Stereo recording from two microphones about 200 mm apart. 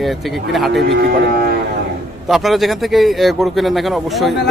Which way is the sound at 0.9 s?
50° right (ahead or behind).